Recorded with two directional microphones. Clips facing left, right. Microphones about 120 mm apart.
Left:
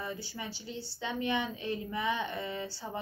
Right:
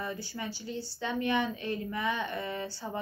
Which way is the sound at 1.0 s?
20° left (ahead or behind).